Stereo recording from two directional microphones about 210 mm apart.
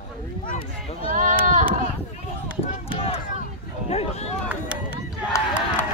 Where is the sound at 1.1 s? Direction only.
35° right (ahead or behind).